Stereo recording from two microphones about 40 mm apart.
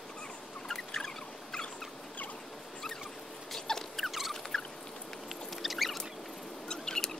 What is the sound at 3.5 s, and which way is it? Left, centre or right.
Rodents, centre.